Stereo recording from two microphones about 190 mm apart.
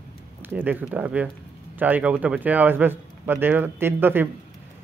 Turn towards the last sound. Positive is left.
turn(degrees=-10)  # may be behind; listen again after turning